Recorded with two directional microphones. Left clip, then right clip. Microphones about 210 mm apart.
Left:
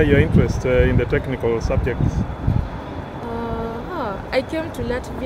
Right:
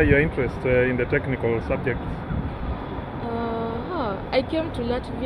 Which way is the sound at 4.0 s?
15° left (ahead or behind).